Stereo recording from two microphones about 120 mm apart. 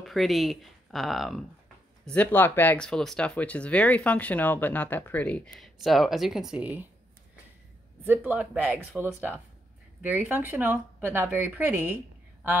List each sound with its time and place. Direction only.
0.0 s speech: centre (ahead or behind)
2.0 s speech: 15° left (ahead or behind); by 6.9 s 10° right (ahead or behind)
8.0 s a woman's voice: 15° right (ahead or behind)